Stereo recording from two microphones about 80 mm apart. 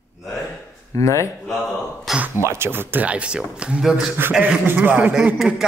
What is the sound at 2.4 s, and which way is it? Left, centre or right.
Speech, right.